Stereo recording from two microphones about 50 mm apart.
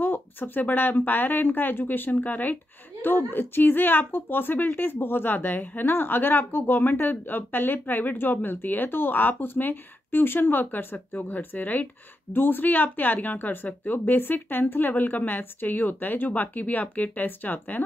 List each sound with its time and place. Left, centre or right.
0.0 s speech: left